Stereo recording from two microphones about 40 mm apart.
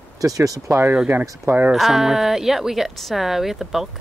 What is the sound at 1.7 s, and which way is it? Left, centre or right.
Speech, centre.